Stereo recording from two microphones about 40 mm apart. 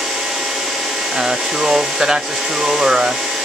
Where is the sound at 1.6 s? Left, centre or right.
Centre.